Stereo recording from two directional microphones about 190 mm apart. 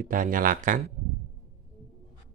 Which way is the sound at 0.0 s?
45° right (ahead or behind).